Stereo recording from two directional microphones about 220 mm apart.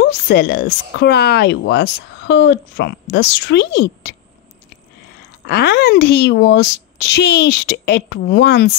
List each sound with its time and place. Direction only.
0.0 s speech: 45° left (ahead or behind)
5.5 s speech: 50° left (ahead or behind)